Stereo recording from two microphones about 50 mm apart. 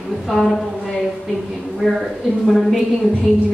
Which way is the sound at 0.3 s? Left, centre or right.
Centre.